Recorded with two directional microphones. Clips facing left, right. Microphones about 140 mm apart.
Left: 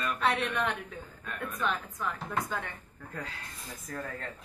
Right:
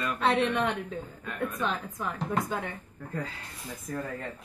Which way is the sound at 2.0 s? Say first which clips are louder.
Right 2 dB; 25° right (ahead or behind).